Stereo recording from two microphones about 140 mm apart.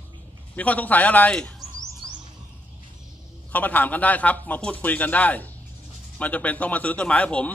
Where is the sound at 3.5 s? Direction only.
10° left (ahead or behind).